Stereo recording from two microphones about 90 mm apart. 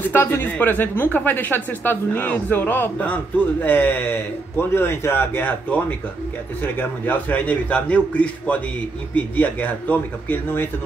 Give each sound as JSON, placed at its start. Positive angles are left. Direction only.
{"t": 0.1, "sound": "a man's voice", "side_deg": 25}